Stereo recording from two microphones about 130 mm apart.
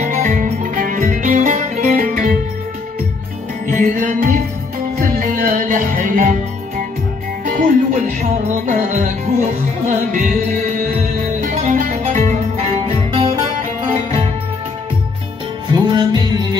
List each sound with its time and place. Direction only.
0.1 s music: 85° right
3.6 s music: 85° right
7.4 s music: 90° right
11.4 s music: 80° right
12.2 s music: 55° right (ahead or behind)
13.9 s music: 70° right (ahead or behind)
15.7 s music: 35° right (ahead or behind)